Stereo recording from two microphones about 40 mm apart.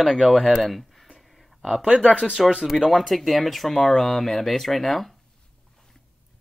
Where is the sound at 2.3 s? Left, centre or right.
Right.